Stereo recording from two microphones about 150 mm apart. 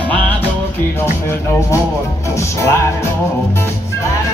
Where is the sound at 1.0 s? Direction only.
15° left (ahead or behind).